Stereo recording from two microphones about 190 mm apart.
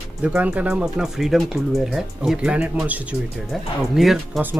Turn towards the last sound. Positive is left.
turn(degrees=-5)  # may be behind; listen again after turning